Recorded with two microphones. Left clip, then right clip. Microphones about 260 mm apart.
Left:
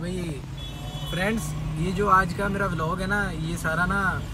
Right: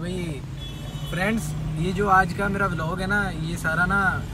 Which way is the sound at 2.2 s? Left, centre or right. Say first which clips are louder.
Right 2 dB; centre.